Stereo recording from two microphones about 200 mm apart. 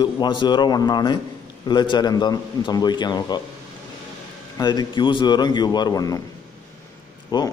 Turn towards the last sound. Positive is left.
turn(degrees=20)  # may be behind; listen again after turning